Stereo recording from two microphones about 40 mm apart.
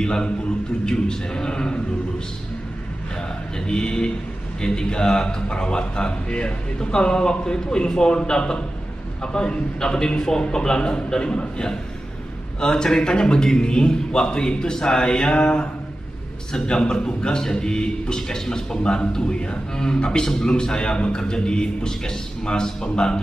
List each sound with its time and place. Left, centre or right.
0.0 s a man's voice: centre
3.5 s a man's voice: centre